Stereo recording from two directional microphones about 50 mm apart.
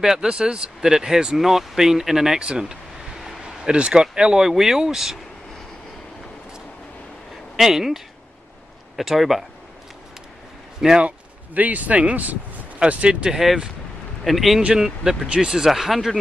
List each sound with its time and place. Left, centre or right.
0.0 s speech: centre
3.6 s speech: centre
7.5 s speech: centre
11.0 s speech: right
14.2 s speech: centre
14.6 s speech: centre